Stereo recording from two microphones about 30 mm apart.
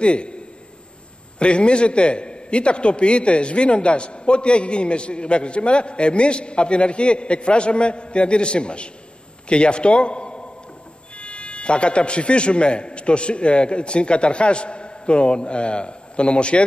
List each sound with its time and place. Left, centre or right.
0.0 s a man's voice: left
1.4 s a man's voice: left